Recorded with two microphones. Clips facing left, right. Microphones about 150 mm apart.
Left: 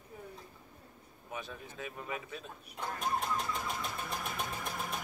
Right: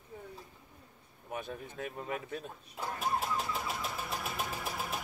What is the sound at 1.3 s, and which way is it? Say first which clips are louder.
Speech: right 3 dB; 50° right (ahead or behind).